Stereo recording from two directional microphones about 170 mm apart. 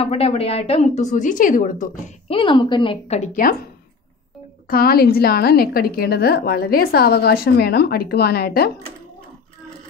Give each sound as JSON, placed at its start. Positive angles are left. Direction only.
{"t": 0.0, "sound": "a woman's voice", "side_deg": 35}
{"t": 2.2, "sound": "a woman's voice", "side_deg": 30}
{"t": 4.6, "sound": "a woman's voice", "side_deg": 60}